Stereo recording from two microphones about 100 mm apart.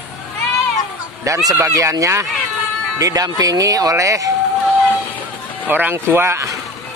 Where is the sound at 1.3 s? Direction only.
35° right (ahead or behind).